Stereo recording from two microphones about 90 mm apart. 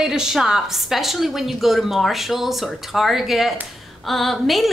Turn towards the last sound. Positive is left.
turn(degrees=0)  # may be behind; listen again after turning